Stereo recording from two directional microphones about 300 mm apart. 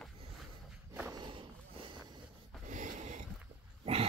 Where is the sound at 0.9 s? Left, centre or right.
Centre.